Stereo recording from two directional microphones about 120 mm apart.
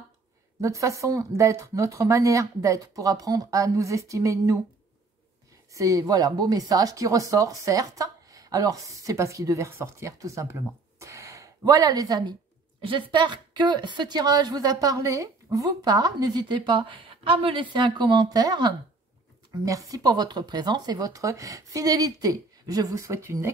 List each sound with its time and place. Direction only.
0.6 s speech: 25° right (ahead or behind)
5.7 s a woman's voice: 30° right (ahead or behind)